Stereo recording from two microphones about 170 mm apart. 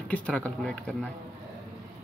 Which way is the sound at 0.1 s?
5° left (ahead or behind).